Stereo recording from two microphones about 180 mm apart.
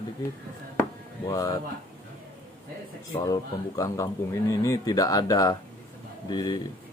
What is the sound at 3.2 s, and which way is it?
A man's voice, 20° left (ahead or behind).